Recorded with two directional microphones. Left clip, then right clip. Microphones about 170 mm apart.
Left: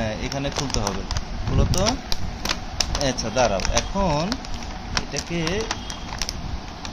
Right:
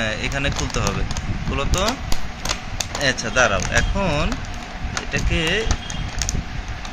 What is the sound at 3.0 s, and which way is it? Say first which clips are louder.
Speech: right 4 dB; 10° left (ahead or behind).